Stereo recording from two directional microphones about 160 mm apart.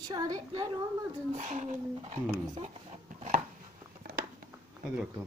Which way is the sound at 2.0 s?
35° right (ahead or behind).